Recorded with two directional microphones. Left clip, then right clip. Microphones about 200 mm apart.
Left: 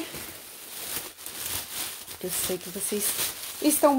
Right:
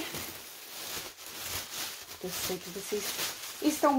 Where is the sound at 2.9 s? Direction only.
50° left (ahead or behind).